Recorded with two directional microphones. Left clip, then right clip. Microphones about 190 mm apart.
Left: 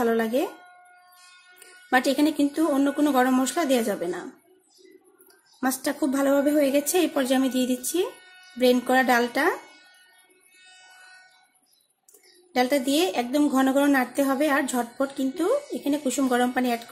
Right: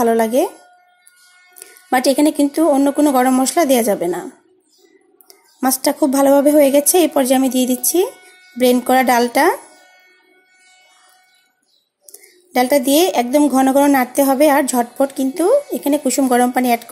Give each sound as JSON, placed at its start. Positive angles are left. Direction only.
{"t": 0.0, "sound": "speech", "side_deg": -30}
{"t": 1.9, "sound": "speech", "side_deg": -30}
{"t": 5.6, "sound": "a woman's voice", "side_deg": -30}
{"t": 12.5, "sound": "a woman's voice", "side_deg": -30}